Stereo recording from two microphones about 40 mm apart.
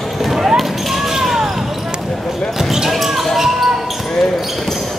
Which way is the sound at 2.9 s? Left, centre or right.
Centre.